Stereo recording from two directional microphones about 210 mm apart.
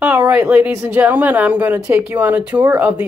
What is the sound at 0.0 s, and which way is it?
Speech, 10° right (ahead or behind).